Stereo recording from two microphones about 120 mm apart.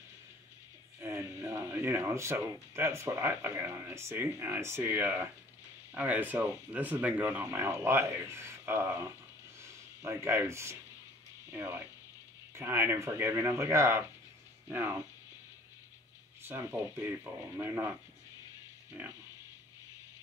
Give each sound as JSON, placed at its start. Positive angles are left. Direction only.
{"t": 1.0, "sound": "speech", "side_deg": -25}
{"t": 16.4, "sound": "speech", "side_deg": -20}
{"t": 19.0, "sound": "speech", "side_deg": -20}